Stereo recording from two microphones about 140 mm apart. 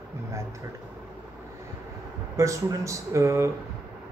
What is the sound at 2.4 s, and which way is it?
Speech, 20° right (ahead or behind).